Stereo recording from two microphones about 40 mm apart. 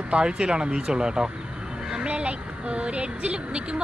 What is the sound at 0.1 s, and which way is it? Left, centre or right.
A woman's voice, right.